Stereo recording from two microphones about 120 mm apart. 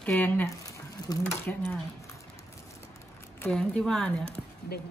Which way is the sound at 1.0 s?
35° left (ahead or behind).